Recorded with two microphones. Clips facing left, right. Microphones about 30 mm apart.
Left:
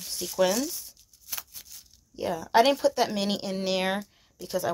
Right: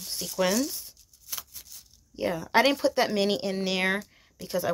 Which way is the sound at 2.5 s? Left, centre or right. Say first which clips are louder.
Left 2 dB; centre.